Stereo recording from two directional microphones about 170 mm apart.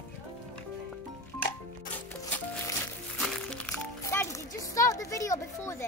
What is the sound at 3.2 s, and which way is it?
Music, 5° left (ahead or behind).